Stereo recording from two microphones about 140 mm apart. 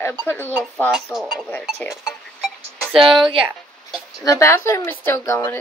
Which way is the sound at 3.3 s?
5° right (ahead or behind).